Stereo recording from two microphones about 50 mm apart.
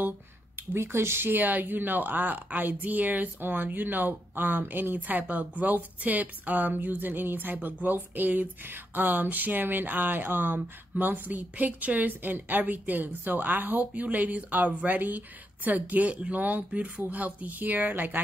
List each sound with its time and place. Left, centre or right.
0.7 s speech: right